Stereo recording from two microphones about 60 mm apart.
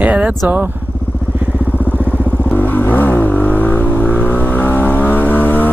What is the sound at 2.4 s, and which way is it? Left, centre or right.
Vehicle, left.